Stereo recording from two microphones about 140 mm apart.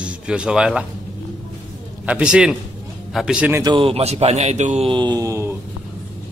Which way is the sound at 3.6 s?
40° right (ahead or behind).